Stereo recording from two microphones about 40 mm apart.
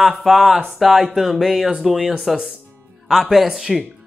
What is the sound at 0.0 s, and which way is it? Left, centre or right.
A woman's voice, centre.